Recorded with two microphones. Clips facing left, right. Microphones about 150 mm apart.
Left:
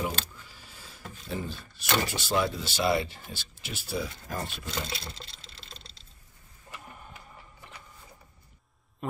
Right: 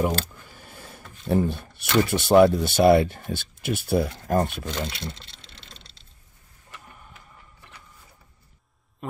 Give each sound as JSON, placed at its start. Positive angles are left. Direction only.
{"t": 0.0, "sound": "speech", "side_deg": -55}
{"t": 4.8, "sound": "sewing machine", "side_deg": 0}